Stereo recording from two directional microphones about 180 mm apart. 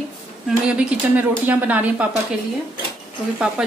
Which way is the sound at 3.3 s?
5° right (ahead or behind).